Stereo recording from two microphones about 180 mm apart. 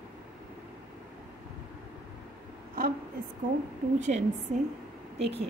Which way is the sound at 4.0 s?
40° right (ahead or behind).